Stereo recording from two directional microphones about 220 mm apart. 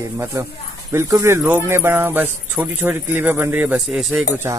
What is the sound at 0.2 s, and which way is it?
Speech, 15° right (ahead or behind).